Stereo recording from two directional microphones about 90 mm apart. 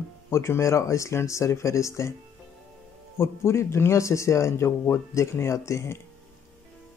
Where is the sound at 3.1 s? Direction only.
30° left (ahead or behind).